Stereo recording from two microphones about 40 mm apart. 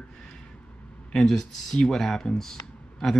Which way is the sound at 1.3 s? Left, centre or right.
Centre.